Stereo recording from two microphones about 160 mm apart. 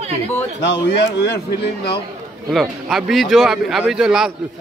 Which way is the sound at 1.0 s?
90° left.